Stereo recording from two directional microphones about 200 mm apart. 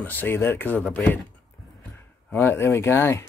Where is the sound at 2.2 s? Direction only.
10° left (ahead or behind).